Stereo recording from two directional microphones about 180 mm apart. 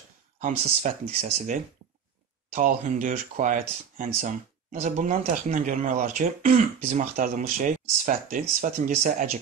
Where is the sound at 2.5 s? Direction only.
45° right (ahead or behind).